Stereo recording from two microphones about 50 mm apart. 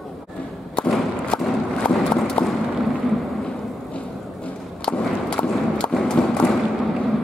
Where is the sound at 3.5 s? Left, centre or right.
Left.